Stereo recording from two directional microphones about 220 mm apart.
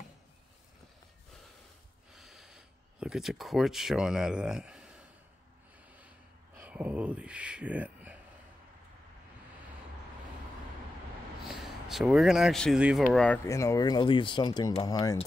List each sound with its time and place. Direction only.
2.1 s a sound: centre (ahead or behind)
6.6 s speech: 5° right (ahead or behind)
11.4 s speech: centre (ahead or behind); by 15.2 s 20° left (ahead or behind)